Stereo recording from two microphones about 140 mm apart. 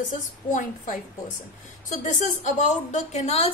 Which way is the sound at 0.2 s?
70° left (ahead or behind).